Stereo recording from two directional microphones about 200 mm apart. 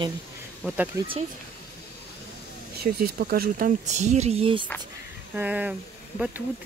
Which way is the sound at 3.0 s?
50° right (ahead or behind).